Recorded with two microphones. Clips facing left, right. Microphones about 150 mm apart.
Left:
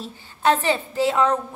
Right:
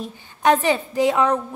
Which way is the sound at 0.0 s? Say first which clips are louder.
Right 2 dB; 15° right (ahead or behind).